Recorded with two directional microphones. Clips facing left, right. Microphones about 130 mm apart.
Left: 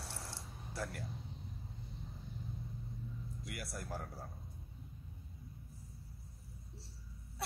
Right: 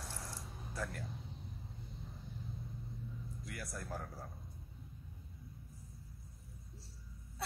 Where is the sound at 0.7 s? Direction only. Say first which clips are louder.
Even; 30° left (ahead or behind).